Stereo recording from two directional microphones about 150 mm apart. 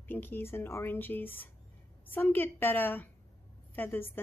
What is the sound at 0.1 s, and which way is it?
Speech, 15° left (ahead or behind).